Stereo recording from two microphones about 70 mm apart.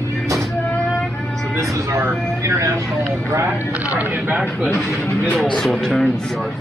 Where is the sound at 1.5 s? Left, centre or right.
Right.